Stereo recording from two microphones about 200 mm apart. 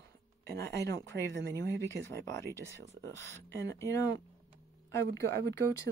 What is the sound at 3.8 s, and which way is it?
Speech, 15° left (ahead or behind).